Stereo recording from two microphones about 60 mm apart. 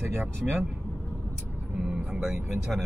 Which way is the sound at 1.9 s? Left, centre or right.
Centre.